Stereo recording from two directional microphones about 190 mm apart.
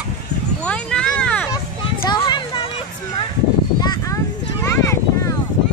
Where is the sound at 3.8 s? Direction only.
20° left (ahead or behind).